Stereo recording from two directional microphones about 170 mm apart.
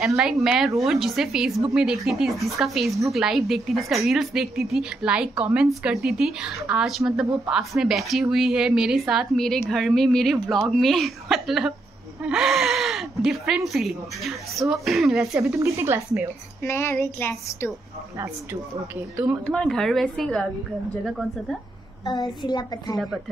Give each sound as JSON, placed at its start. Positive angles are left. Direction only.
{"t": 0.0, "sound": "speech", "side_deg": -5}
{"t": 15.3, "sound": "a woman's voice", "side_deg": -15}
{"t": 16.6, "sound": "a sound", "side_deg": 15}
{"t": 18.1, "sound": "a woman's voice", "side_deg": -15}
{"t": 19.4, "sound": "speech", "side_deg": 5}
{"t": 22.0, "sound": "a child's voice", "side_deg": 25}
{"t": 22.9, "sound": "speech", "side_deg": 0}